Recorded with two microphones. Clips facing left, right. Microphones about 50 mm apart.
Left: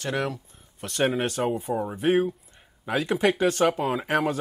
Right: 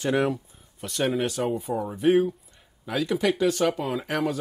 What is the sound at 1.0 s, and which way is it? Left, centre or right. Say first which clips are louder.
Speech: left 1 dB; left.